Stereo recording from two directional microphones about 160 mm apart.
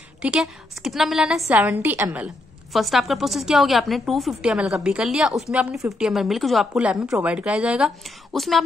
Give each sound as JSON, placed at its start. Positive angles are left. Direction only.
{"t": 0.2, "sound": "a woman's voice", "side_deg": -5}